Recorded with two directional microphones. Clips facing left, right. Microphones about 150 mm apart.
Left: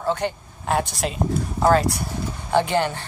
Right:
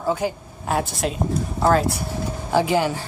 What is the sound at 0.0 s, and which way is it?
Speech, 5° right (ahead or behind).